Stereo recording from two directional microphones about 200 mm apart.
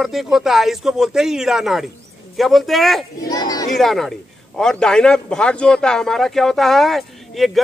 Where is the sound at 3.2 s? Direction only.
20° left (ahead or behind).